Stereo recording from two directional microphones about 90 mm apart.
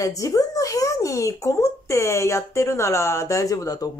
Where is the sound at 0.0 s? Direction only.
40° left (ahead or behind).